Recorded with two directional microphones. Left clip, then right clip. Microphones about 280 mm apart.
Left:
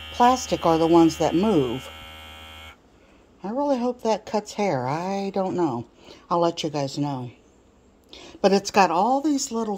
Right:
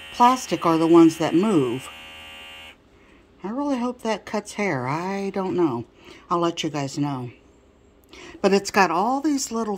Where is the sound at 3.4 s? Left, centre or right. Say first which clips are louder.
Left 2 dB; centre.